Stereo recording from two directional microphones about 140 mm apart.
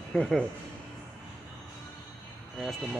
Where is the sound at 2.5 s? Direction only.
Centre (ahead or behind).